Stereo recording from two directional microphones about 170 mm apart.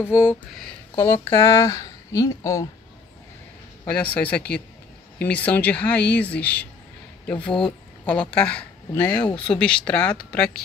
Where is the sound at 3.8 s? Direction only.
10° left (ahead or behind).